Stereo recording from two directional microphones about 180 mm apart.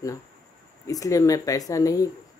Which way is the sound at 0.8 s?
20° left (ahead or behind).